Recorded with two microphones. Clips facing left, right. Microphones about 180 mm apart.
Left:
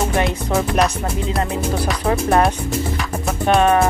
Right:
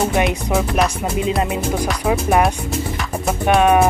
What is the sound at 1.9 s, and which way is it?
Music, 5° right (ahead or behind).